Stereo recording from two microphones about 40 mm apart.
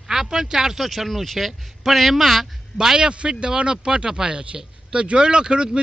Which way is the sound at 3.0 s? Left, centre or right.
Right.